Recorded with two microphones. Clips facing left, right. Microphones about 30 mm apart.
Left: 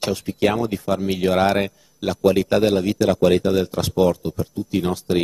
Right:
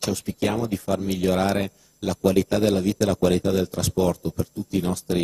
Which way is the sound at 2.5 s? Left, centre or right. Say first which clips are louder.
Left 3 dB; centre.